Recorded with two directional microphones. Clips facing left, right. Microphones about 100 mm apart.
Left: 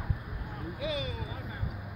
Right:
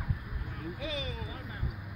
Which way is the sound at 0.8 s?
5° left (ahead or behind).